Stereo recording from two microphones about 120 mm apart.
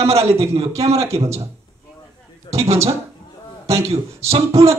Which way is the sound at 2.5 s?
45° left (ahead or behind).